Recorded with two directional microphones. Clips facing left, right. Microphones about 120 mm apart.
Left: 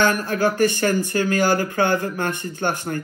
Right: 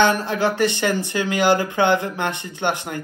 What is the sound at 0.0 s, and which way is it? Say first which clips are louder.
A man's voice: right 1 dB; 20° right (ahead or behind).